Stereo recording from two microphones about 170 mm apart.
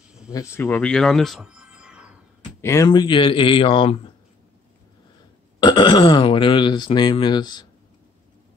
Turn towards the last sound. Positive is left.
turn(degrees=25)  # may be behind; listen again after turning